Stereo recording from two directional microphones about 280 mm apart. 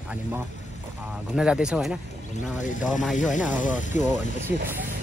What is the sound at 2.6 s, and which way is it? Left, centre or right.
Speech, left.